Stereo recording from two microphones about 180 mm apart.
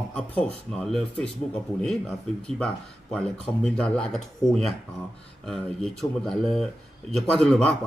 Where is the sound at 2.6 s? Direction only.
5° left (ahead or behind).